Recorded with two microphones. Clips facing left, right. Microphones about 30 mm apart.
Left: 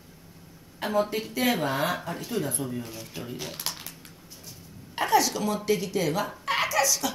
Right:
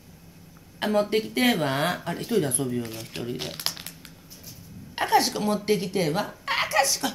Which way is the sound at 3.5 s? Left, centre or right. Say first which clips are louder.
Right 3 dB; right.